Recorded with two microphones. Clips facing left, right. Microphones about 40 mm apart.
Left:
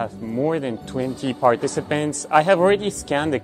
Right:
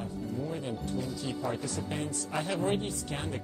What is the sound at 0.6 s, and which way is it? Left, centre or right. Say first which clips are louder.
Speech: left 9 dB; left.